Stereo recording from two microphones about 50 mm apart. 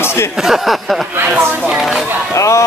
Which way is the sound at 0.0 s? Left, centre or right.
Left.